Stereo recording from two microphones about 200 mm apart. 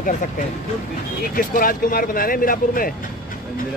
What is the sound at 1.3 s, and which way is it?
Speech, 45° left (ahead or behind).